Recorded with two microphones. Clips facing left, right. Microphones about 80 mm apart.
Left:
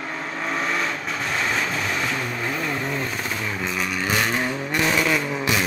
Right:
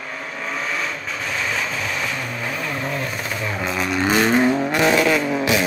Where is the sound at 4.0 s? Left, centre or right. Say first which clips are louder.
Right 8 dB; right.